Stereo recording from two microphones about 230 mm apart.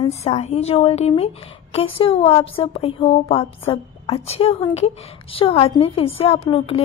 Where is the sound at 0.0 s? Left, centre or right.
Left.